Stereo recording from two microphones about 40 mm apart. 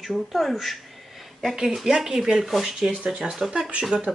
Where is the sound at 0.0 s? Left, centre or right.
Centre.